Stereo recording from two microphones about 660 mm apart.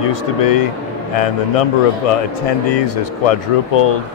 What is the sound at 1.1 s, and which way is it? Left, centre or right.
A man's voice, left.